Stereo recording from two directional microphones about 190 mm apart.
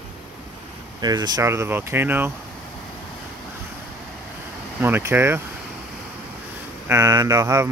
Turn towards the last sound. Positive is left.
turn(degrees=-20)  # may be behind; listen again after turning